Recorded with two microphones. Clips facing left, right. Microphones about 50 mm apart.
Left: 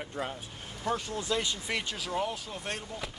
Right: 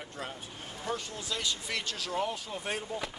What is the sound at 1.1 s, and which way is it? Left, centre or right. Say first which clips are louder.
Speech: left 4 dB; left.